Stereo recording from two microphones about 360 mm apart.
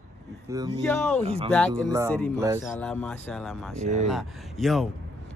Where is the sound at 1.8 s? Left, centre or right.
Centre.